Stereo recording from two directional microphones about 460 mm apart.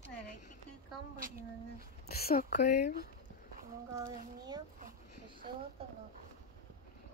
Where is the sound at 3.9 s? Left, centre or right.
Centre.